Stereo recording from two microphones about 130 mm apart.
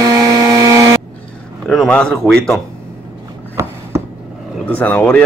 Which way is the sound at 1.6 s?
5° left (ahead or behind).